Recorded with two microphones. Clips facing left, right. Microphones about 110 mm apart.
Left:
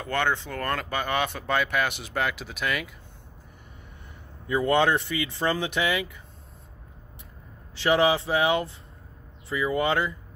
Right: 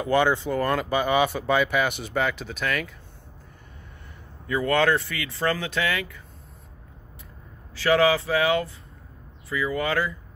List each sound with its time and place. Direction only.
0.0 s speech: 5° right (ahead or behind)
4.5 s speech: 20° left (ahead or behind)
7.7 s speech: 25° left (ahead or behind)